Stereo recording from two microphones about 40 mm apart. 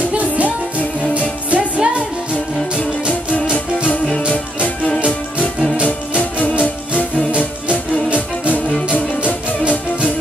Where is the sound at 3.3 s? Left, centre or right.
Left.